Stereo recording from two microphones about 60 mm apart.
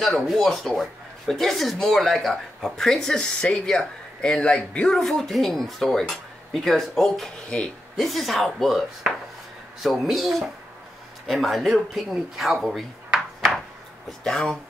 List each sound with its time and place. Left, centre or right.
0.0 s speech: centre
5.0 s speech: centre
8.0 s speech: centre
14.0 s speech: centre